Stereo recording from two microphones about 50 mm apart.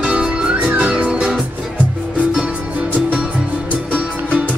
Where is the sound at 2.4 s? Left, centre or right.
Right.